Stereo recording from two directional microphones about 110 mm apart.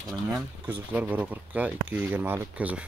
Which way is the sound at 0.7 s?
15° right (ahead or behind).